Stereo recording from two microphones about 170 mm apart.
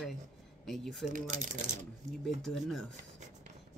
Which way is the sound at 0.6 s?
Centre (ahead or behind).